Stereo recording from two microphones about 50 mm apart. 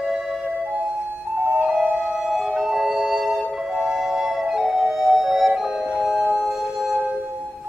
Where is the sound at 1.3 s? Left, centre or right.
Right.